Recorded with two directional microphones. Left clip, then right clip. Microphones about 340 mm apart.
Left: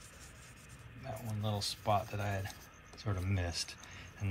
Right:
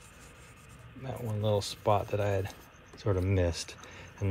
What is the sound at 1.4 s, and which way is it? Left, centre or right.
Speech, centre.